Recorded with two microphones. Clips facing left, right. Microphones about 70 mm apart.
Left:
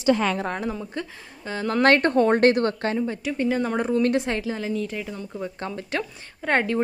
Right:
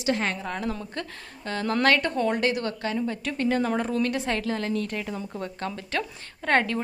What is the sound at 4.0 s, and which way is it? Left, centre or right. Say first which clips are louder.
A woman's voice: left 4 dB; left.